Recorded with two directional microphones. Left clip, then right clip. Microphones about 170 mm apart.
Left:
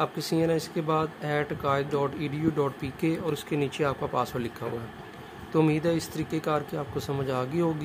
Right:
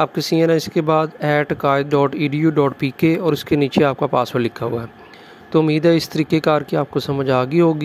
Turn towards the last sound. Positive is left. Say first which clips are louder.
# right 12 dB
turn(degrees=-40)  # may be behind; listen again after turning